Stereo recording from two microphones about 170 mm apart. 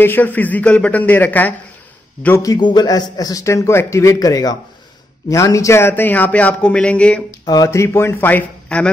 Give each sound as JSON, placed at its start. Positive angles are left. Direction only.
{"t": 0.0, "sound": "a man's voice", "side_deg": 10}
{"t": 7.4, "sound": "a man's voice", "side_deg": 20}